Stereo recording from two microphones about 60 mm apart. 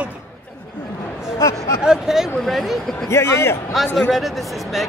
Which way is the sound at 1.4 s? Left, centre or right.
Left.